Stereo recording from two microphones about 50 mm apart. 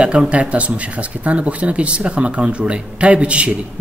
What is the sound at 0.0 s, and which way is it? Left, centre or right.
Speech, right.